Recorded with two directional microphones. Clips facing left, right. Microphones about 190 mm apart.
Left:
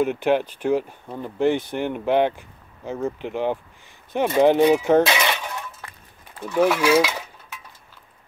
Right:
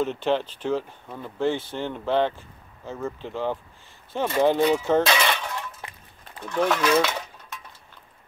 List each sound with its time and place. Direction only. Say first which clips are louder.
0.0 s speech: left 4 dB; 15° left (ahead or behind)
5.8 s a sound: right 1 dB; 20° right (ahead or behind)
6.4 s speech: left 4 dB; 10° left (ahead or behind)